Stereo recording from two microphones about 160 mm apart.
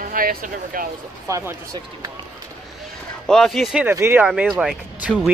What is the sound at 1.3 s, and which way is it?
Speech, 20° right (ahead or behind).